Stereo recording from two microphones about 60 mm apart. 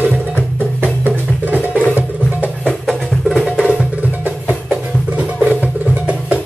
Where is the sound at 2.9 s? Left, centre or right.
Centre.